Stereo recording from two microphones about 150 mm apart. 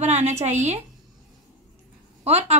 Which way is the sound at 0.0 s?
50° right (ahead or behind).